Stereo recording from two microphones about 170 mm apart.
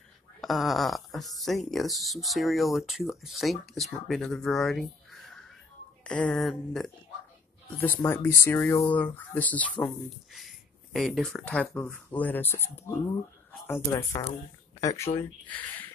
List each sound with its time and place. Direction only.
0.4 s speech: centre (ahead or behind)
6.0 s speech: 5° left (ahead or behind)
7.7 s speech: 10° left (ahead or behind)